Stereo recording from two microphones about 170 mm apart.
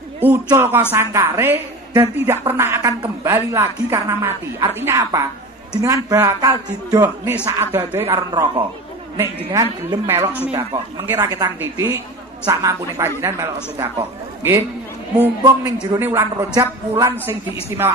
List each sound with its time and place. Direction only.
0.5 s a man's voice: 15° right (ahead or behind)